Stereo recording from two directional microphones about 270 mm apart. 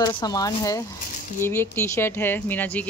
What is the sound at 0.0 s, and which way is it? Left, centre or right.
Speech, centre.